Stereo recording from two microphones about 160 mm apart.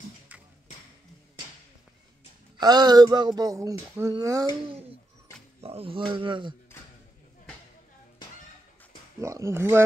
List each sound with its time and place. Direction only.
2.6 s speech: 25° right (ahead or behind)
5.6 s speech: 40° right (ahead or behind)
9.2 s speech: 20° right (ahead or behind)